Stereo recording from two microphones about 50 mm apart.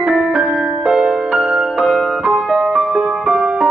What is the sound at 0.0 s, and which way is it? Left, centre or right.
Music, centre.